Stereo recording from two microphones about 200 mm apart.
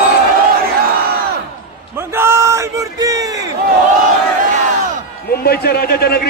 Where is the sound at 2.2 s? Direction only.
15° right (ahead or behind).